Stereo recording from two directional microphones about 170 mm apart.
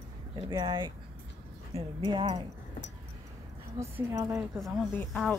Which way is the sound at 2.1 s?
30° right (ahead or behind).